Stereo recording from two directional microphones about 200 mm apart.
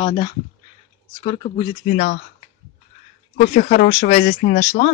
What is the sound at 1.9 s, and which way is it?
Speech, 40° left (ahead or behind).